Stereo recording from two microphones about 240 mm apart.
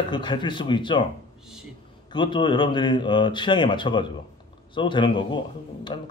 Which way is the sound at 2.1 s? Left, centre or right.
Centre.